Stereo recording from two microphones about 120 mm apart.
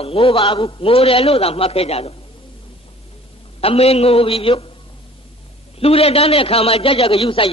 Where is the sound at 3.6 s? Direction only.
55° left (ahead or behind).